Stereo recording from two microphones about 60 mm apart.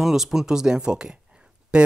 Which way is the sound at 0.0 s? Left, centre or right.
Centre.